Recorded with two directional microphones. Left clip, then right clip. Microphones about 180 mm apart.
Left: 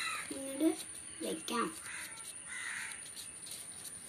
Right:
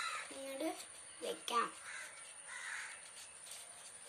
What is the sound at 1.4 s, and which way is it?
Speech, 15° right (ahead or behind).